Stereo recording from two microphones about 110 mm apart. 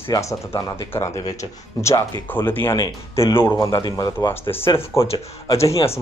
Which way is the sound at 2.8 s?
35° left (ahead or behind).